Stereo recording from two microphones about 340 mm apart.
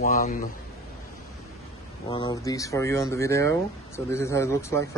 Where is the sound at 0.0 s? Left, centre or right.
Left.